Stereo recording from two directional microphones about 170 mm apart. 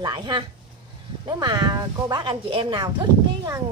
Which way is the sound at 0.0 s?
25° right (ahead or behind).